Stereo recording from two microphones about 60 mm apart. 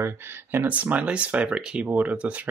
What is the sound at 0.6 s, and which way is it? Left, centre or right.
Speech, right.